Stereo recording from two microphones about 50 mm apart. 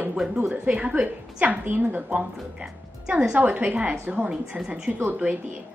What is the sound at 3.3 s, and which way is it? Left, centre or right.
A woman's voice, right.